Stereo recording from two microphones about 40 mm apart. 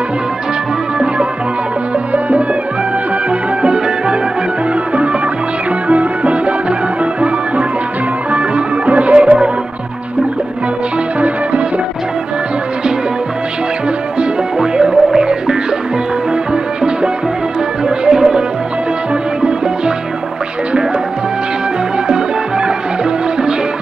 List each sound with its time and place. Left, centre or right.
2.1 s music: right
3.6 s music: right
5.9 s music: right
8.3 s music: right
14.6 s music: right
17.8 s music: centre